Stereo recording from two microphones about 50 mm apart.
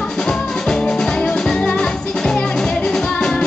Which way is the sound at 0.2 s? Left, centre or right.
Centre.